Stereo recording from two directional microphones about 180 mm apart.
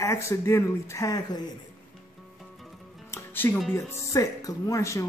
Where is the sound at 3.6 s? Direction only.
15° left (ahead or behind).